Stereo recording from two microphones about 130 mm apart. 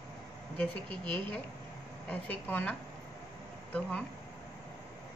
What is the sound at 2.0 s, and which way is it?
Speech, 15° left (ahead or behind).